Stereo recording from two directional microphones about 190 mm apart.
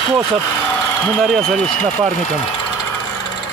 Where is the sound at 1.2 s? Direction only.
Centre (ahead or behind).